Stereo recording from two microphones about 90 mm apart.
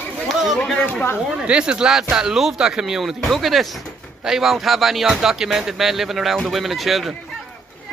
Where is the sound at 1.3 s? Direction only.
10° right (ahead or behind).